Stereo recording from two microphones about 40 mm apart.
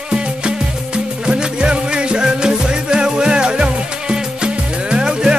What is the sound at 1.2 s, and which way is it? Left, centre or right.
Music, right.